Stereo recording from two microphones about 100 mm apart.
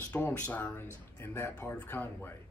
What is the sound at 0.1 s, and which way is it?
Speech, 15° left (ahead or behind).